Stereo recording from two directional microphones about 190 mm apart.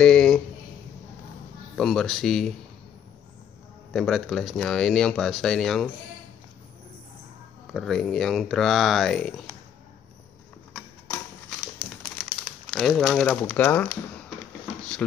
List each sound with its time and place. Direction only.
0.0 s a sound: 5° left (ahead or behind)
1.8 s speech: centre (ahead or behind)
3.9 s speech: centre (ahead or behind)
7.6 s speech: centre (ahead or behind)
11.6 s crumpling: 5° left (ahead or behind)
15.0 s speech: 5° left (ahead or behind)